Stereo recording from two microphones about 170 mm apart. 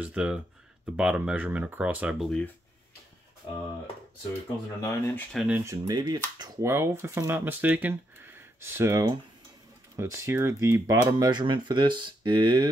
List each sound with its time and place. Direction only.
0.0 s speech: 5° right (ahead or behind)
4.8 s speech: 10° left (ahead or behind)
5.7 s speech: 25° right (ahead or behind)